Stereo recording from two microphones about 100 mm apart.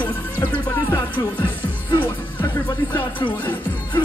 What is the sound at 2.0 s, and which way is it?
Music, 20° left (ahead or behind).